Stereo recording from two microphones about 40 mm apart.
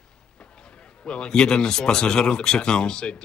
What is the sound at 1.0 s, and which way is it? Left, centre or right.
Speech, left.